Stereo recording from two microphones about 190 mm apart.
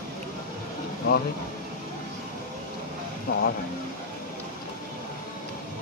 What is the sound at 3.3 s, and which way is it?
Speech, 50° left (ahead or behind).